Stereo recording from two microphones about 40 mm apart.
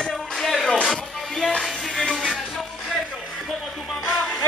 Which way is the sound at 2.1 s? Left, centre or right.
Centre.